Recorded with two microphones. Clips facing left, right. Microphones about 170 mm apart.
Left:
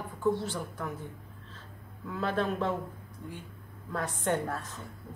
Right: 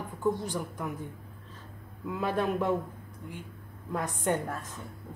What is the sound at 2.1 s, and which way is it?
Speech, 10° right (ahead or behind).